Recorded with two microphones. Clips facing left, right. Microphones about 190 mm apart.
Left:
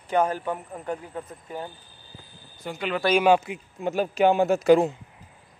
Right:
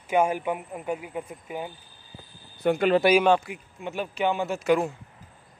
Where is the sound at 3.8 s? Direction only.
40° left (ahead or behind).